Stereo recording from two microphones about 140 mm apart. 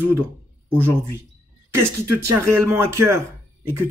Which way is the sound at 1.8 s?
15° right (ahead or behind).